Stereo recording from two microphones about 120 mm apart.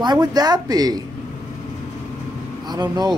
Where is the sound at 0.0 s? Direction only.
35° right (ahead or behind).